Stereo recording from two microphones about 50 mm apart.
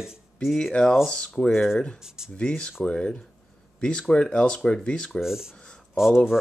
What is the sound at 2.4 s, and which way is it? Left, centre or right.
Speech, centre.